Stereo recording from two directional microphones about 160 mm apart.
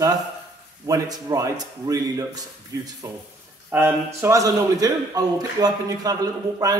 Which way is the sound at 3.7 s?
15° right (ahead or behind).